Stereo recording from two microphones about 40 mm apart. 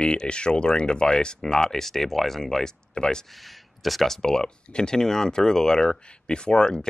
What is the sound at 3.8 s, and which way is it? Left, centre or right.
Speech, centre.